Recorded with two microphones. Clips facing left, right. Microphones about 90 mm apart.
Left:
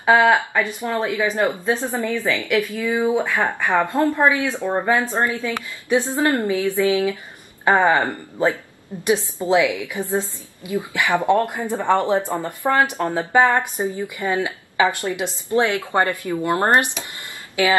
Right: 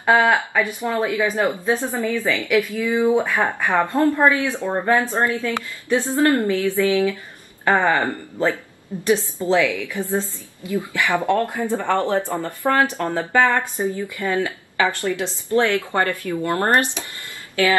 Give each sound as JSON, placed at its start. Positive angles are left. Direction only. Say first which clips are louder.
{"t": 0.0, "sound": "speech", "louder": "left 1 dB", "side_deg": 10}
{"t": 1.3, "sound": "a woman's voice", "louder": "even", "side_deg": -15}
{"t": 1.9, "sound": "a woman's voice", "louder": "even", "side_deg": 20}
{"t": 3.3, "sound": "a woman's voice", "louder": "even", "side_deg": -15}
{"t": 3.6, "sound": "a woman's voice", "louder": "even", "side_deg": 15}